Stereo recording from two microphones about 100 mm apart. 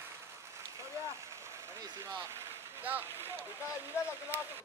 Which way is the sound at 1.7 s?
30° right (ahead or behind).